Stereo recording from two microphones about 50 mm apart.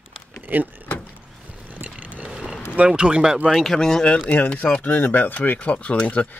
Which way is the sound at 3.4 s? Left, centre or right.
Centre.